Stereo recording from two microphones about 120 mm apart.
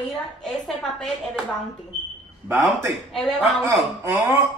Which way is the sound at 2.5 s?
20° right (ahead or behind).